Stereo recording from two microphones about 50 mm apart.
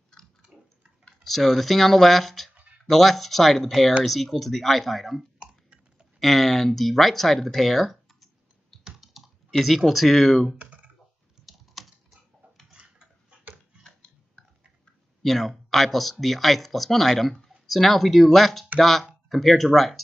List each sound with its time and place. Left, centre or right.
1.2 s speech: centre
5.4 s a sound: centre
6.1 s speech: centre
8.8 s computer keyboard: centre
10.6 s computer keyboard: right
11.3 s typing: centre
12.7 s a sound: right
15.2 s speech: centre